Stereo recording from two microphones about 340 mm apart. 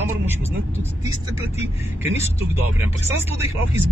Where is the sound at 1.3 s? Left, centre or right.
Centre.